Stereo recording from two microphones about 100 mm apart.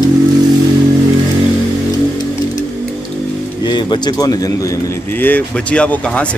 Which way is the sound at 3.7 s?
50° left (ahead or behind).